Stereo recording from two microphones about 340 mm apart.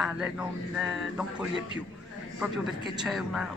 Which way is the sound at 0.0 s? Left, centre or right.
Centre.